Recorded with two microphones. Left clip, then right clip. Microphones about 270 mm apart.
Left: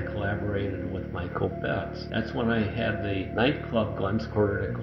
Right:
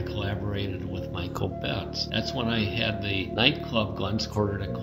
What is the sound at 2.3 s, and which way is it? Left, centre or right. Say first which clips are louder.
Speech: left 3 dB; right.